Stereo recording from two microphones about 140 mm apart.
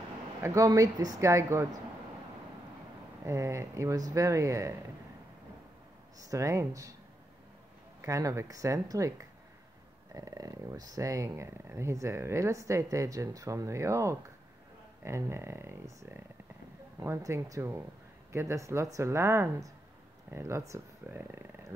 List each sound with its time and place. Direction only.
0.4 s speech: 25° right (ahead or behind)
3.3 s speech: 20° right (ahead or behind)
6.1 s speech: 25° right (ahead or behind)
8.0 s speech: 20° right (ahead or behind)